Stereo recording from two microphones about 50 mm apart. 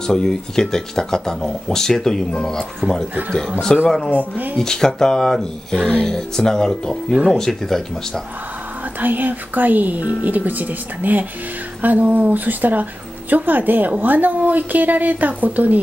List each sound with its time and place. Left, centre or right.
0.0 s speech: centre
4.2 s a woman's voice: right
4.6 s speech: centre
9.0 s a woman's voice: right